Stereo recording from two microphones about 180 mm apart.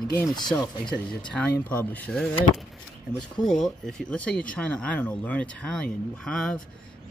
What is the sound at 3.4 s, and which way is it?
Speech, centre (ahead or behind).